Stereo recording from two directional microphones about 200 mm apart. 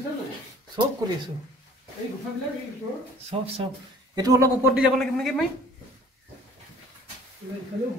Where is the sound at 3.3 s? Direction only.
30° right (ahead or behind).